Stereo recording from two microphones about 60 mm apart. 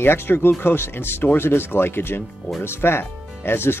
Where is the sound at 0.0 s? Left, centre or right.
Left.